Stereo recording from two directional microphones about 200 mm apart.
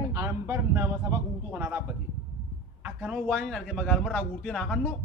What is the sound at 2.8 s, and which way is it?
A man's voice, 5° right (ahead or behind).